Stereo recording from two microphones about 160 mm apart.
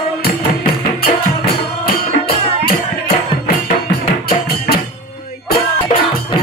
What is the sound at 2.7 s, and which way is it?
Music, 70° left (ahead or behind).